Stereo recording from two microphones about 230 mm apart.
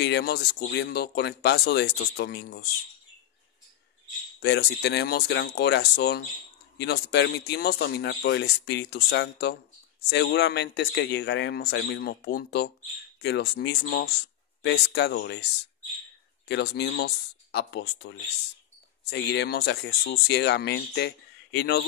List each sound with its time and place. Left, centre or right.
0.0 s speech: left
4.4 s speech: left
16.4 s speech: left